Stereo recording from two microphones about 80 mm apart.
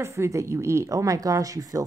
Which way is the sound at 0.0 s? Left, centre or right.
Right.